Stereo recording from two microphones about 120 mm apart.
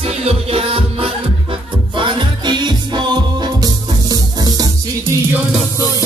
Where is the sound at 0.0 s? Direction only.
60° right (ahead or behind); by 4.6 s 30° right (ahead or behind).